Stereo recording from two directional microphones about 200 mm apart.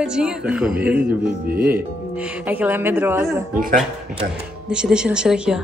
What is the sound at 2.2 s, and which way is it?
A woman's voice, 5° right (ahead or behind).